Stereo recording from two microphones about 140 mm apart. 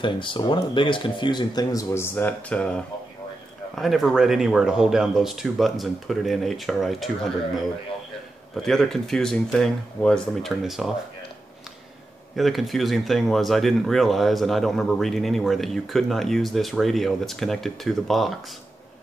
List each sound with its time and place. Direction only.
0.0 s speech: 35° left (ahead or behind); by 10.9 s centre (ahead or behind)
12.4 s speech: centre (ahead or behind)